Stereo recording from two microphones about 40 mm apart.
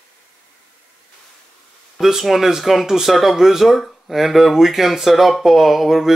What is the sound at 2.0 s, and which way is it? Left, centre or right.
Speech, centre.